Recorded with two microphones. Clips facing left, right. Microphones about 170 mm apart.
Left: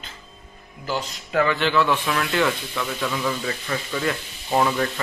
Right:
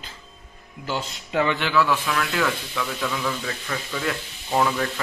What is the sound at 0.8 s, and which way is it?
Speech, 20° right (ahead or behind).